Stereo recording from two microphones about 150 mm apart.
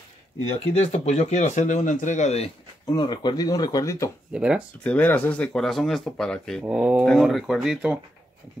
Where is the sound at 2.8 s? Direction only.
30° left (ahead or behind).